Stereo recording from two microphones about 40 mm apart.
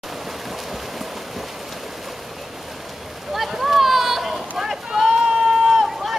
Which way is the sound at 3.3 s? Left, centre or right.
Centre.